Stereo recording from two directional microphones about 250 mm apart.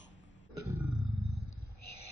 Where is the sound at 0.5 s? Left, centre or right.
Left.